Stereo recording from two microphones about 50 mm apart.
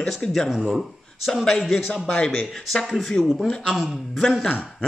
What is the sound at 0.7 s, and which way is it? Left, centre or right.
Speech, centre.